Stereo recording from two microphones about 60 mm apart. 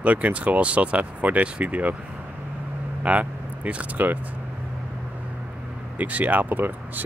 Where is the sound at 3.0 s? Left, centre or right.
Right.